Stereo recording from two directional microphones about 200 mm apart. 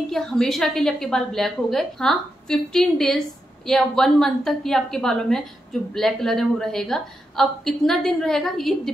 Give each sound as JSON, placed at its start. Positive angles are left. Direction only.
{"t": 0.1, "sound": "a woman's voice", "side_deg": 5}